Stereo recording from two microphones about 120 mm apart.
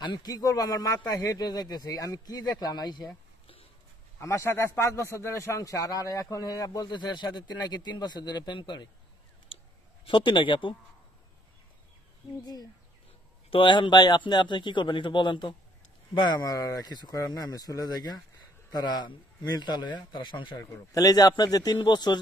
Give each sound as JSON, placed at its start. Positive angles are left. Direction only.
{"t": 0.0, "sound": "a man's voice", "side_deg": 35}
{"t": 4.2, "sound": "a man's voice", "side_deg": 25}
{"t": 10.0, "sound": "speech", "side_deg": 45}
{"t": 13.5, "sound": "a man's voice", "side_deg": 45}
{"t": 20.7, "sound": "a man's voice", "side_deg": 30}